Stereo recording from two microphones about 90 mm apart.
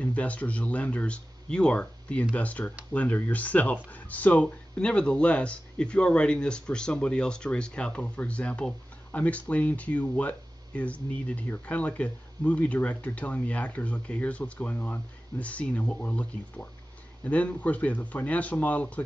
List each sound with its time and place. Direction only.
0.0 s speech: 15° left (ahead or behind)